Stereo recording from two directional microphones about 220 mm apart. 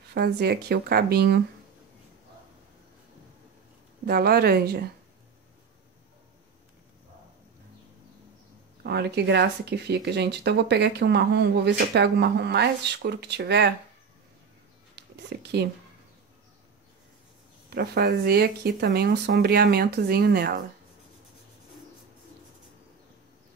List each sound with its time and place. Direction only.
0.1 s speech: 45° right (ahead or behind)
4.0 s speech: 45° right (ahead or behind)
8.8 s speech: 50° right (ahead or behind)
15.0 s a sound: 50° right (ahead or behind)
17.6 s speech: 45° right (ahead or behind)